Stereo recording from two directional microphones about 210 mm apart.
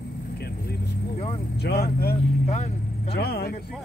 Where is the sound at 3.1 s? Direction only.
50° left (ahead or behind).